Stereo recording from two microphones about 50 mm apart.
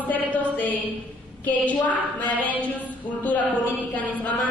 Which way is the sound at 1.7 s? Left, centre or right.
Left.